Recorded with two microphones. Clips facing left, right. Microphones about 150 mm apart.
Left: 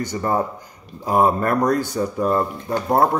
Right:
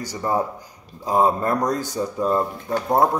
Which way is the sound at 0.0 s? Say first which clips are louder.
Left 2 dB; 10° right (ahead or behind).